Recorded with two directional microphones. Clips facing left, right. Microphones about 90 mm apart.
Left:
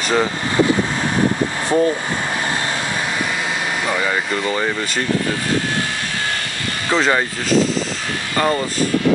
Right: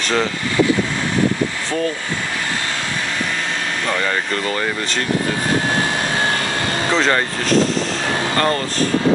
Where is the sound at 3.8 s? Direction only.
10° left (ahead or behind).